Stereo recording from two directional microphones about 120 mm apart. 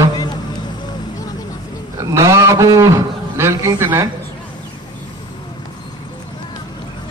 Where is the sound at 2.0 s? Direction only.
25° right (ahead or behind).